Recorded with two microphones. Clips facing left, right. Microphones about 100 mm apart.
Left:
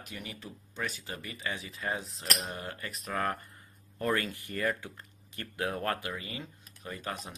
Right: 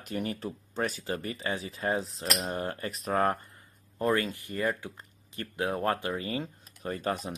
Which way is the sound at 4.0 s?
20° right (ahead or behind).